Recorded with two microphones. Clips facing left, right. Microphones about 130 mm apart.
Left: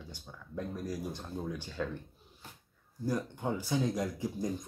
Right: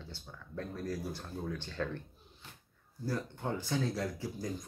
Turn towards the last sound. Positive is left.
turn(degrees=20)  # may be behind; listen again after turning